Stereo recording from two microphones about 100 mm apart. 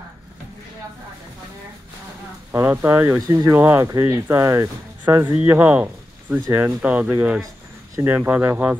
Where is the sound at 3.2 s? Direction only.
35° right (ahead or behind).